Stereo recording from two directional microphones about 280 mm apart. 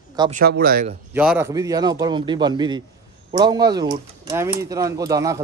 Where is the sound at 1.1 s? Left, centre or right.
Centre.